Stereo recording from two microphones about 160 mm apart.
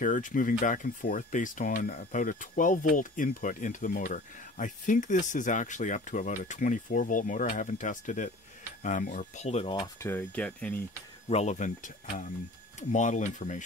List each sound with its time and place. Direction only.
0.0 s speech: 55° left (ahead or behind); by 9.8 s 35° left (ahead or behind)
9.9 s speech: 15° left (ahead or behind)
11.2 s speech: 45° left (ahead or behind)